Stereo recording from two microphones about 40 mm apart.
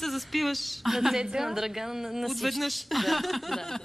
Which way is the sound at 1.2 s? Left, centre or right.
Centre.